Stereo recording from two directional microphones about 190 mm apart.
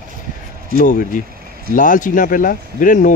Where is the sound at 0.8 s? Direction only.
45° left (ahead or behind).